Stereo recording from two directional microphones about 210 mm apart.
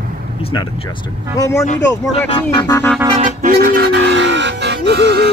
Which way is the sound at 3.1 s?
35° right (ahead or behind).